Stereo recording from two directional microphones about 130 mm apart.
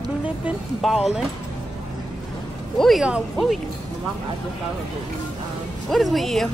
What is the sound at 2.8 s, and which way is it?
Speech, centre (ahead or behind).